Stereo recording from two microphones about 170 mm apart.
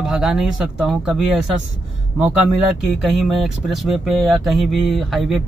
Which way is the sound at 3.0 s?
Centre (ahead or behind).